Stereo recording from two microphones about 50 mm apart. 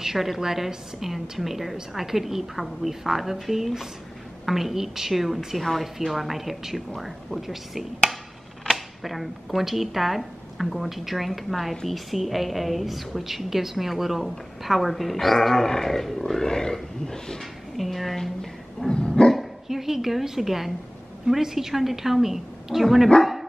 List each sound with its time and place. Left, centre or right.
0.0 s a woman's voice: centre
5.6 s a woman's voice: centre
18.9 s dog: centre
19.3 s a sound: centre
21.3 s a woman's voice: centre